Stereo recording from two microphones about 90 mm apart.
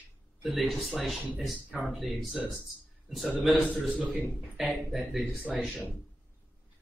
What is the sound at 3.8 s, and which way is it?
Speech, 15° right (ahead or behind).